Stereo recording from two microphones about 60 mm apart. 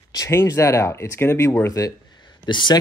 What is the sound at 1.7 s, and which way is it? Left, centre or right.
Speech, left.